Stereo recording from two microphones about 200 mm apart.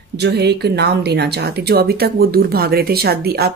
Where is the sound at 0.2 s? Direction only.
55° right (ahead or behind).